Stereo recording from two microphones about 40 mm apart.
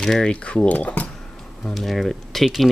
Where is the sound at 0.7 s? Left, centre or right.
Left.